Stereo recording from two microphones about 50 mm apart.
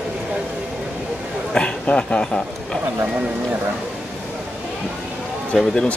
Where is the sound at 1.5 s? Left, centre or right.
Left.